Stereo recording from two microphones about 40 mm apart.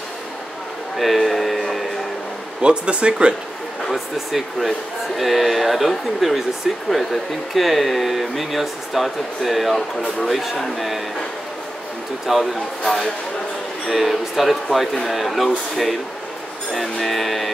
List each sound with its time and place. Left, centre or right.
0.9 s a sound: centre
2.6 s speech: right
3.9 s speech: centre
12.3 s speech: centre